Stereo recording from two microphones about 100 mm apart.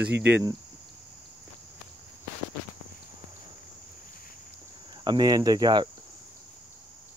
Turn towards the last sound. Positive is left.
turn(degrees=-45)  # may be behind; listen again after turning